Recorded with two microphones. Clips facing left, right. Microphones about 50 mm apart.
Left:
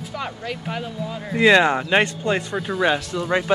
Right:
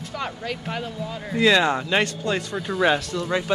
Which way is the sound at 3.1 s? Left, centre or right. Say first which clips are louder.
Left 3 dB; left.